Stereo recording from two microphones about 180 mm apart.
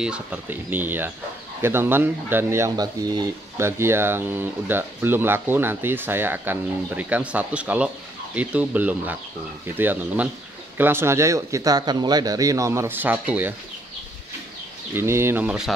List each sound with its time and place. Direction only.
0.0 s speech: 5° right (ahead or behind)
15.0 s speech: 15° right (ahead or behind)